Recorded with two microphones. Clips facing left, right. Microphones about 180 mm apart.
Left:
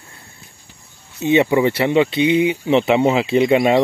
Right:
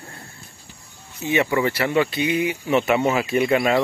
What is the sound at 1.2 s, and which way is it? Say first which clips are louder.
Speech: left 6 dB; 20° left (ahead or behind).